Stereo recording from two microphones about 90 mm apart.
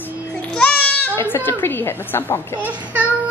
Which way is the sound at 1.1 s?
25° left (ahead or behind).